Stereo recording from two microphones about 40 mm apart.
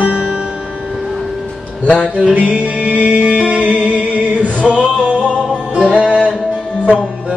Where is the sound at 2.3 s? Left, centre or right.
Right.